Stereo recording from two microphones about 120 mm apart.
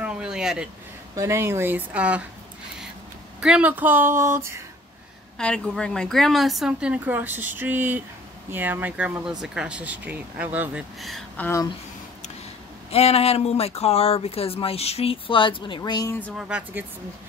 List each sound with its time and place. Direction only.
0.0 s a sound: 5° right (ahead or behind)
1.1 s speech: 25° right (ahead or behind)
3.3 s speech: 10° right (ahead or behind)
5.4 s a woman's voice: 10° left (ahead or behind); by 10.8 s 10° right (ahead or behind)
11.0 s a woman's voice: centre (ahead or behind)
11.3 s speech: 15° left (ahead or behind)
12.9 s speech: 60° left (ahead or behind); by 16.1 s 35° left (ahead or behind)
16.1 s speech: 15° left (ahead or behind)
16.3 s speech: 10° right (ahead or behind)